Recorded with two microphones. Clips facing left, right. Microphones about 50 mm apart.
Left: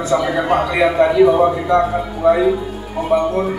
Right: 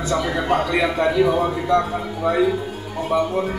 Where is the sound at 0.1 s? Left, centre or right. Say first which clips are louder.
Left 4 dB; centre.